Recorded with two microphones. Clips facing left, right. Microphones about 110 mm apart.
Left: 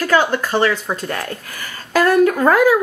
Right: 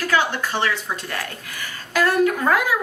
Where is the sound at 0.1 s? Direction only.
45° left (ahead or behind).